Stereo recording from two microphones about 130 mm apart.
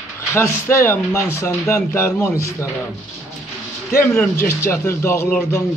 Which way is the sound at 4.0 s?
10° left (ahead or behind).